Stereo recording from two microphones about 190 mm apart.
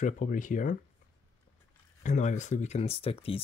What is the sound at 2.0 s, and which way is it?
Speech, 40° left (ahead or behind).